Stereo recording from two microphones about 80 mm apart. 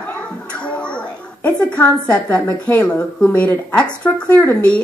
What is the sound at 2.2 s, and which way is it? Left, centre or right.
Speech, left.